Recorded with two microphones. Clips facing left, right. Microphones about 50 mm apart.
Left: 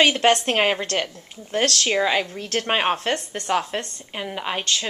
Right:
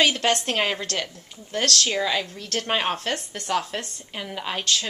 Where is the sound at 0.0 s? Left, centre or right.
Left.